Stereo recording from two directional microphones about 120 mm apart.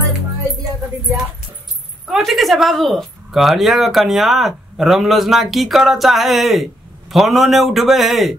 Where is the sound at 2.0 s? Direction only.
Centre (ahead or behind).